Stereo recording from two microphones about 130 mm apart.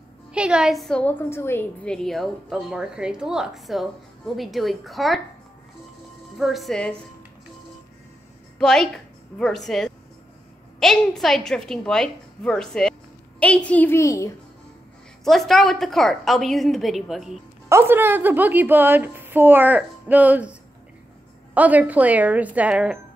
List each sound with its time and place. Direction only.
0.3 s a woman's voice: 5° right (ahead or behind)
1.3 s a woman's voice: 20° left (ahead or behind)
1.9 s a woman's voice: 5° left (ahead or behind)
6.3 s a woman's voice: centre (ahead or behind)
8.5 s a woman's voice: 5° left (ahead or behind); by 14.3 s 25° left (ahead or behind)
15.2 s a woman's voice: centre (ahead or behind)
17.6 s a woman's voice: 20° right (ahead or behind)
21.5 s a woman's voice: 10° right (ahead or behind)